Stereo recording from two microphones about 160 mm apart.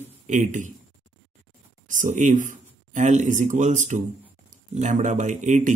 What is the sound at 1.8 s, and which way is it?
A man's voice, 50° right (ahead or behind).